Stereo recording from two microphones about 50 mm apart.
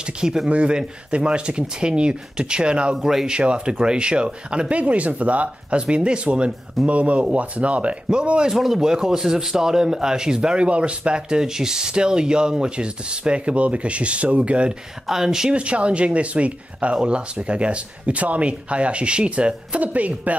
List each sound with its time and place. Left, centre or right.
0.0 s speech: centre
3.0 s speech: centre
3.3 s speech: right
15.0 s speech: centre
15.5 s speech: right